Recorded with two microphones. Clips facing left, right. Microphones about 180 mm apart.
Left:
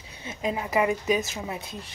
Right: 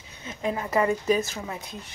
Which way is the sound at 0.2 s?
20° left (ahead or behind).